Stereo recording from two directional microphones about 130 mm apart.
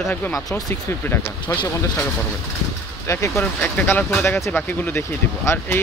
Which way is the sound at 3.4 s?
10° left (ahead or behind).